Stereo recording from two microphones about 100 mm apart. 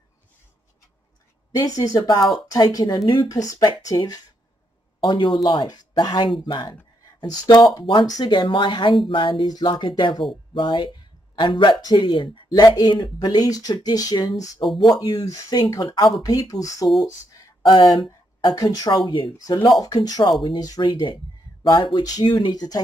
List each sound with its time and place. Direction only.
1.5 s speech: 35° left (ahead or behind)
5.0 s speech: 50° left (ahead or behind)
9.0 s music: 55° left (ahead or behind)
10.5 s speech: 50° left (ahead or behind)
14.6 s speech: centre (ahead or behind)
14.9 s speech: 40° left (ahead or behind)
15.9 s music: 55° left (ahead or behind)
16.2 s speech: 35° left (ahead or behind)
17.6 s speech: 45° left (ahead or behind)
19.3 s speech: 40° left (ahead or behind)
20.8 s speech: 55° left (ahead or behind)